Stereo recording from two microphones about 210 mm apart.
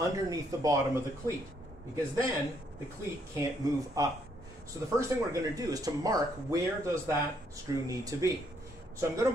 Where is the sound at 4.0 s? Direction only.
15° right (ahead or behind).